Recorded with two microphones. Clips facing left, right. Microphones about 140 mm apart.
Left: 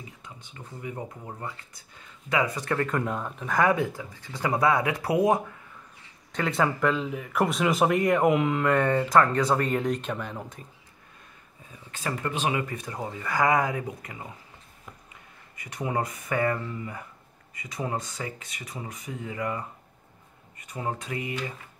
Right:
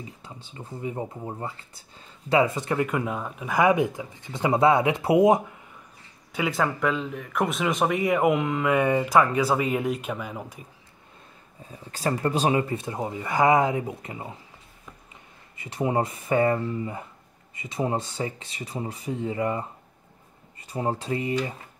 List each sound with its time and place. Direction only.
0.2 s speech: 30° right (ahead or behind)
3.0 s speech: 5° right (ahead or behind); by 5.4 s 20° right (ahead or behind)
6.3 s speech: 5° right (ahead or behind)
11.7 s speech: 35° right (ahead or behind)
15.5 s speech: 30° right (ahead or behind)